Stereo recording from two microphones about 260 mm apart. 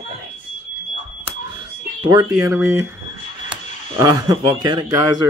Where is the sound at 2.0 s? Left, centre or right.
Centre.